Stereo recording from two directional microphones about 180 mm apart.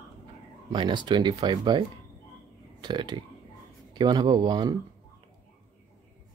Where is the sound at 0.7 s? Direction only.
25° right (ahead or behind).